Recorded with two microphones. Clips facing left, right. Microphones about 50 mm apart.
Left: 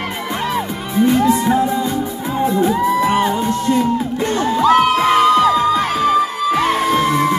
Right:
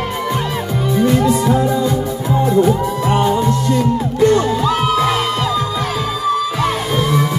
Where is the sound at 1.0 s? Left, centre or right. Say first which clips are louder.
Left 2 dB; left.